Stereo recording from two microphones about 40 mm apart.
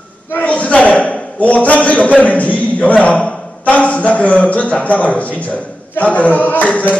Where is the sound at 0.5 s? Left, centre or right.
Left.